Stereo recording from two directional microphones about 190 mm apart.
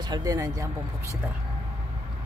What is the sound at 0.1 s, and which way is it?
Speech, 20° right (ahead or behind).